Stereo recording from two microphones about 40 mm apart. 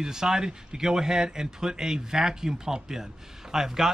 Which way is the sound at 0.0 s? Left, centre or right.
Centre.